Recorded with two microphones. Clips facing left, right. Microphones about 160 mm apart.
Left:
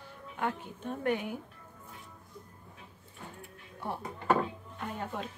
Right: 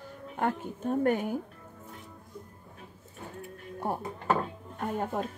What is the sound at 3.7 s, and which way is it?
A woman's voice, 45° right (ahead or behind).